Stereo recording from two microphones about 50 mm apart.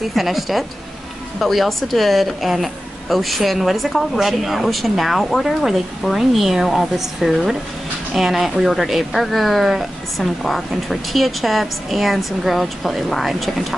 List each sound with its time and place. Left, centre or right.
0.1 s speech: centre